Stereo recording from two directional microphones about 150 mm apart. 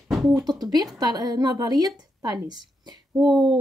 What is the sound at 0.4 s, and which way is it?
A woman's voice, 25° right (ahead or behind).